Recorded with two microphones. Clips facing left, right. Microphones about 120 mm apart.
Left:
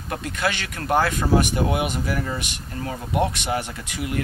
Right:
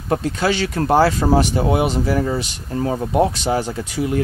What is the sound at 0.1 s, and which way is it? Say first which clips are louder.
Speech: right 7 dB; 35° right (ahead or behind).